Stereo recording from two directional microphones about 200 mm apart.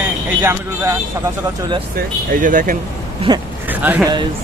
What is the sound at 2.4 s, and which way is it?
Speech, 45° right (ahead or behind).